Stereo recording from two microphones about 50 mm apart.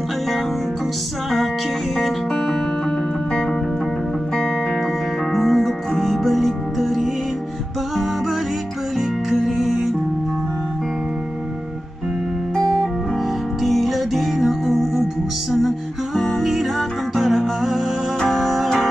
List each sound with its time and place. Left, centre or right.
2.0 s music: centre
5.3 s music: centre
9.3 s music: centre
12.5 s music: centre
13.6 s music: centre
16.2 s music: centre